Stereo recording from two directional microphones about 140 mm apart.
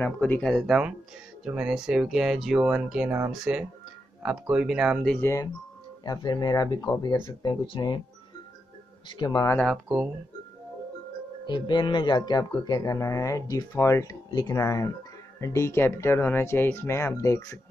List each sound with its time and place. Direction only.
0.0 s speech: 10° left (ahead or behind); by 5.0 s 5° right (ahead or behind)
5.0 s speech: 5° left (ahead or behind)
6.0 s speech: 30° left (ahead or behind)
9.1 s speech: 30° left (ahead or behind)
9.6 s speech: 5° left (ahead or behind)
11.4 s speech: 30° left (ahead or behind)